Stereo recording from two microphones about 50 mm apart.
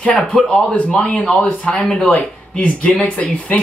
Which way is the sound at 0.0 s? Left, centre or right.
Left.